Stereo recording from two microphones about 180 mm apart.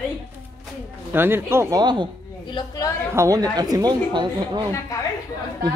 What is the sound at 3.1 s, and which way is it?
A woman's voice, 15° right (ahead or behind).